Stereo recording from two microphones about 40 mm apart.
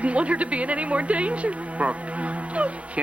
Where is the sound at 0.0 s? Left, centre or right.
Right.